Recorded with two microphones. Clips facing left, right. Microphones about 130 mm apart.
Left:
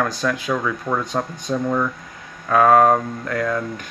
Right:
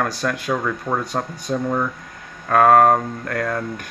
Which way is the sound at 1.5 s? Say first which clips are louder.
Even; 30° right (ahead or behind).